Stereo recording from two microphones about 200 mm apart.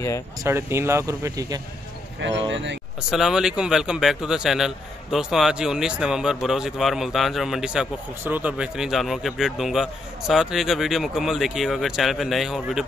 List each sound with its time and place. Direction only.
0.4 s speech: 10° right (ahead or behind)
2.1 s speech: 65° right (ahead or behind)
3.1 s speech: centre (ahead or behind)